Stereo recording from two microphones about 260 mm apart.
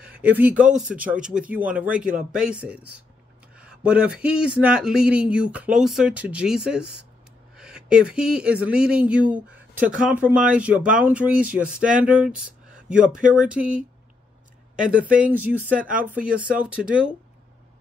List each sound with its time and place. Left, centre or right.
0.0 s a man's voice: centre